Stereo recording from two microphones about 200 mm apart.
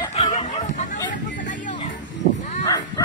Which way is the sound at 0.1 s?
30° left (ahead or behind).